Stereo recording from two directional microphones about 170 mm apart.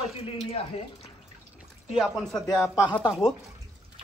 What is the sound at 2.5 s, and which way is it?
Speech, 15° left (ahead or behind).